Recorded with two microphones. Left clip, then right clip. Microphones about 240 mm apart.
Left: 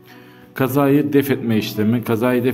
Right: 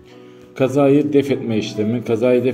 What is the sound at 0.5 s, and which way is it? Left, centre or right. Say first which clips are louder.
A man's voice: right 2 dB; left.